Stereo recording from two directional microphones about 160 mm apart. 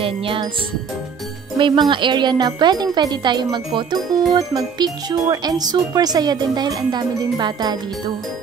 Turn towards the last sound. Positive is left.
turn(degrees=-25)  # may be behind; listen again after turning